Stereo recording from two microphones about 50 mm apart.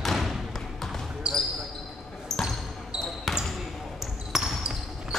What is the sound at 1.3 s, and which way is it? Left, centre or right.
Basketball bounce, centre.